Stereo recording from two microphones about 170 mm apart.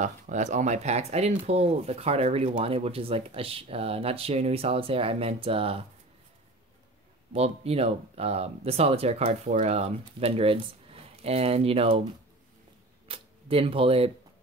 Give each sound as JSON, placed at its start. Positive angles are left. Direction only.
{"t": 0.0, "sound": "speech", "side_deg": -45}
{"t": 7.3, "sound": "speech", "side_deg": -35}
{"t": 13.1, "sound": "speech", "side_deg": -35}